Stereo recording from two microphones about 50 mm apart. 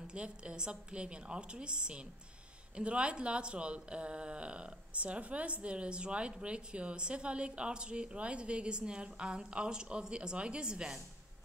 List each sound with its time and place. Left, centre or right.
0.0 s speech: centre